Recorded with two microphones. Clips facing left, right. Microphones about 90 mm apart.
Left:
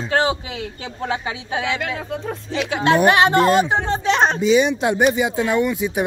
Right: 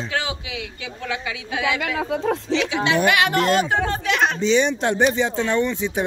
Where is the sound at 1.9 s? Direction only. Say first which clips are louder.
Right 5 dB; 90° right.